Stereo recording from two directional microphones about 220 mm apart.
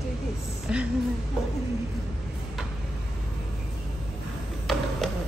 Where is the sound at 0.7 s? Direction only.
5° right (ahead or behind).